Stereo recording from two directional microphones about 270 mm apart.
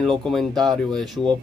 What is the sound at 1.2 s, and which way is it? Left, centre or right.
Speech, centre.